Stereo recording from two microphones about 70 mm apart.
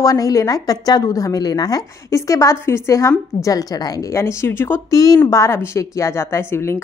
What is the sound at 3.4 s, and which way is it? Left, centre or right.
Speech, left.